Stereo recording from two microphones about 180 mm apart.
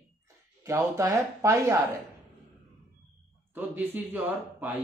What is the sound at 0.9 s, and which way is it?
Speech, 15° right (ahead or behind).